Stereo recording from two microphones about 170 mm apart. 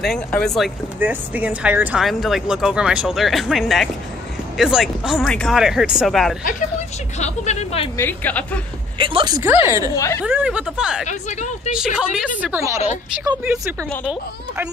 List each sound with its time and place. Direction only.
0.0 s speech: 5° left (ahead or behind)
0.9 s speech: 10° right (ahead or behind)
7.2 s speech: 40° left (ahead or behind)
8.0 s a woman's voice: 10° left (ahead or behind)
8.9 s speech: 30° right (ahead or behind)
9.4 s a woman's voice: 15° right (ahead or behind)
9.9 s a woman's voice: 15° left (ahead or behind)
10.2 s speech: 5° right (ahead or behind)
11.1 s a woman's voice: 45° left (ahead or behind)
11.7 s a woman's voice: 5° right (ahead or behind)